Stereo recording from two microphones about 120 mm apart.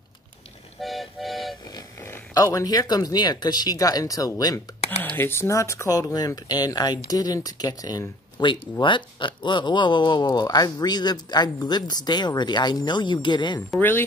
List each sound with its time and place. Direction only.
0.7 s music: centre (ahead or behind)
2.0 s speech: 25° left (ahead or behind)
5.0 s speech: 15° left (ahead or behind); by 13.6 s 40° left (ahead or behind)
13.7 s speech: 15° left (ahead or behind)